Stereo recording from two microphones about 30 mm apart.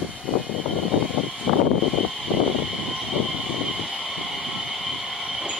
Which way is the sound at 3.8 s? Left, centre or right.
Centre.